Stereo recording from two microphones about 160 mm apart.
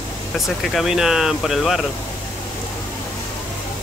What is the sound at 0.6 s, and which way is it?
Speech, centre (ahead or behind).